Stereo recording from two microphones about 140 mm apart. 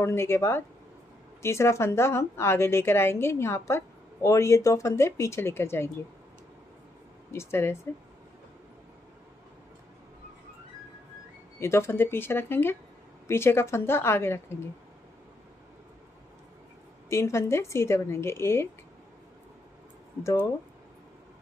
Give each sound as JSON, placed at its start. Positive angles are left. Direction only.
{"t": 0.0, "sound": "a woman's voice", "side_deg": 20}
{"t": 7.2, "sound": "speech", "side_deg": 20}
{"t": 11.6, "sound": "speech", "side_deg": 20}
{"t": 17.1, "sound": "a woman's voice", "side_deg": 20}